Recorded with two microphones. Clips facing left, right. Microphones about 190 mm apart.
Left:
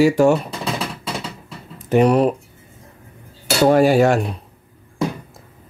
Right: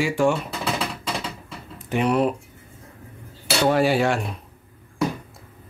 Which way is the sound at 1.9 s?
40° left (ahead or behind).